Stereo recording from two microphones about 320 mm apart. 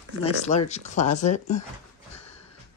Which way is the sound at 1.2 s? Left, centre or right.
Left.